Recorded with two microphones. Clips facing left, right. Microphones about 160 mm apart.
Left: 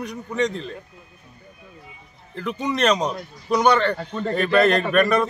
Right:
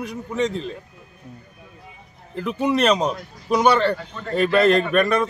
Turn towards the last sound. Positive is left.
turn(degrees=0)  # may be behind; listen again after turning